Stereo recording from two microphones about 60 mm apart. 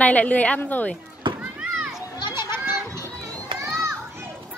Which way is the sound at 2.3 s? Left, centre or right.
Right.